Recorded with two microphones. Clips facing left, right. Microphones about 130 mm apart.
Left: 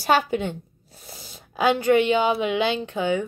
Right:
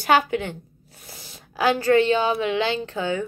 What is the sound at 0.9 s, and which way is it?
A woman's voice, 25° left (ahead or behind).